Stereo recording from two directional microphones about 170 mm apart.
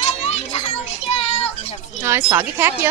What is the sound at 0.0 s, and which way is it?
Children playing, 40° left (ahead or behind).